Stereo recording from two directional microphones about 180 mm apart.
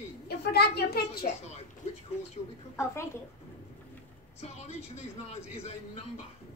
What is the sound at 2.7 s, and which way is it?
Speech, 15° left (ahead or behind).